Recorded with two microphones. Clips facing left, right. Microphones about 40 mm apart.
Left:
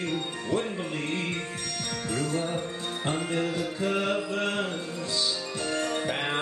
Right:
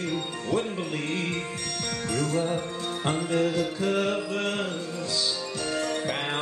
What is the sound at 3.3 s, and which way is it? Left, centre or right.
Music, left.